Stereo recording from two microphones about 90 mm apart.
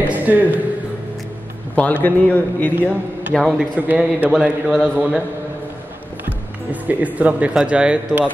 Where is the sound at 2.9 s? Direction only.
20° right (ahead or behind).